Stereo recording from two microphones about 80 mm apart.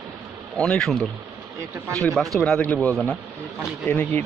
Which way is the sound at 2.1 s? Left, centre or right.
Centre.